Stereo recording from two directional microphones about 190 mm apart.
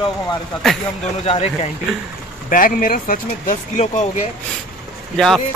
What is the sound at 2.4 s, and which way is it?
Speech, 45° left (ahead or behind).